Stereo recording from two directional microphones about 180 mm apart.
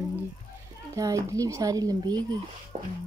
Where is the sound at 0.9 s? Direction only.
20° right (ahead or behind).